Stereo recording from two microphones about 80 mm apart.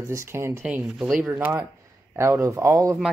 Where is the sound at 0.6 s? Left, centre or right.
Centre.